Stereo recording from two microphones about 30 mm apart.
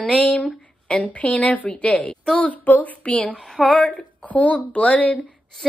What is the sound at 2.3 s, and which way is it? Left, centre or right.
Speech, left.